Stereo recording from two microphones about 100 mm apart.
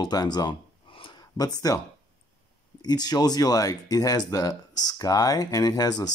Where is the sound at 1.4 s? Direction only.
40° left (ahead or behind).